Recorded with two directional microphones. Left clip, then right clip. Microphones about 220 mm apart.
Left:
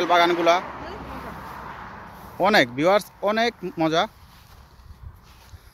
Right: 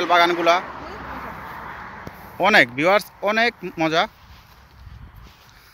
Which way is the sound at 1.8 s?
40° right (ahead or behind).